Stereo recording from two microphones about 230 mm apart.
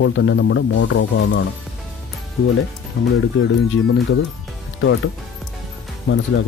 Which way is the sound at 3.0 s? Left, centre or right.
Left.